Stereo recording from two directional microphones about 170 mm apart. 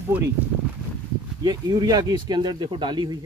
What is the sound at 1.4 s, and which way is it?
Speech, 25° right (ahead or behind).